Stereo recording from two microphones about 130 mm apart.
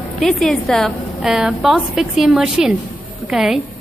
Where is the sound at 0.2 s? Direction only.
Centre (ahead or behind).